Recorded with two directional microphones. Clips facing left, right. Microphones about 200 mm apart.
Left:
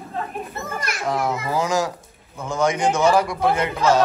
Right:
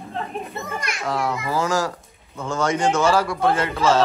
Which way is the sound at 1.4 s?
15° left (ahead or behind).